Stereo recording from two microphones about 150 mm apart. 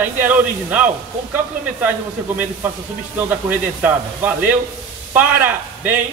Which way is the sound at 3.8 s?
10° right (ahead or behind).